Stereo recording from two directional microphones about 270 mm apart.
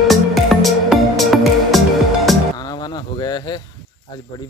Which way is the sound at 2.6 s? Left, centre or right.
Centre.